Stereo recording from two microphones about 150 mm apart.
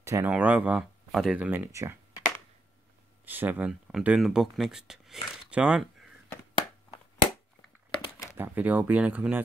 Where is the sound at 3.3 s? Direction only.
10° right (ahead or behind).